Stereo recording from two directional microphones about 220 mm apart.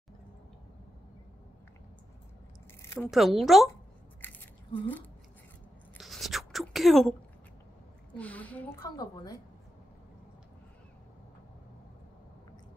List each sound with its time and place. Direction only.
2.8 s a sound: 10° left (ahead or behind)
3.1 s speech: centre (ahead or behind)
4.2 s scissors: 10° left (ahead or behind)
4.7 s a woman's voice: 10° left (ahead or behind)
5.9 s a sound: centre (ahead or behind)
8.1 s a woman's voice: 5° left (ahead or behind)
8.8 s a woman's voice: 20° left (ahead or behind)